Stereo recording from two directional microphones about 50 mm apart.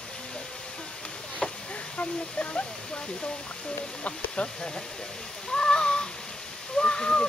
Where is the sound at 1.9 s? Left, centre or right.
Left.